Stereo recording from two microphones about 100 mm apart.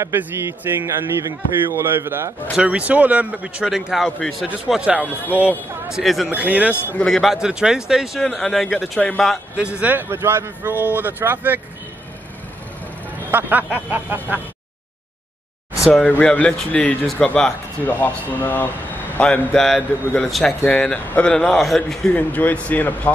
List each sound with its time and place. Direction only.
0.0 s speech: 20° right (ahead or behind)
2.5 s speech: 10° right (ahead or behind)
5.9 s speech: centre (ahead or behind)
6.2 s speech: 15° right (ahead or behind)
6.8 s speech: 20° left (ahead or behind)
7.1 s speech: centre (ahead or behind)
9.6 s speech: 10° right (ahead or behind)
13.3 s speech: 20° right (ahead or behind)
15.9 s speech: 15° left (ahead or behind)
19.5 s speech: 5° left (ahead or behind)
22.1 s speech: 15° left (ahead or behind)